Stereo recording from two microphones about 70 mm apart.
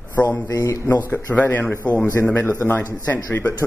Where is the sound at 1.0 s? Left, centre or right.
Left.